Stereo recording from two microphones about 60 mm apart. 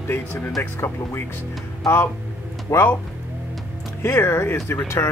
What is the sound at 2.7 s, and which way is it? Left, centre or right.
Speech, left.